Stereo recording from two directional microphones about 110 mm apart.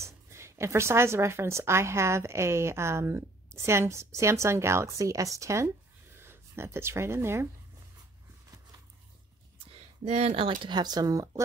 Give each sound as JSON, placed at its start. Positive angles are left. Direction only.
{"t": 0.0, "sound": "a woman's voice", "side_deg": -25}
{"t": 9.7, "sound": "speech", "side_deg": -70}